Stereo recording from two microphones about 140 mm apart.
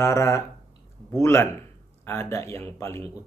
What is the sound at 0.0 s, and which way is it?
Speech, 20° left (ahead or behind).